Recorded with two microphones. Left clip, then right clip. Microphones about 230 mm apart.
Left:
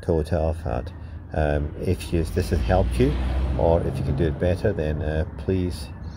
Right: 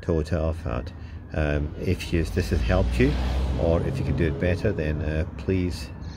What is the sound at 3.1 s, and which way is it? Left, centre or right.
Speech, right.